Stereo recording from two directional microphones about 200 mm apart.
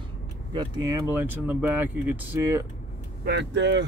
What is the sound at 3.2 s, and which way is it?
Speech, 60° right (ahead or behind).